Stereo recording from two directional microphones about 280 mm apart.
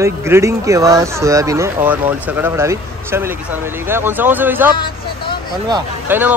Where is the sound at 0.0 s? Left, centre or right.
Centre.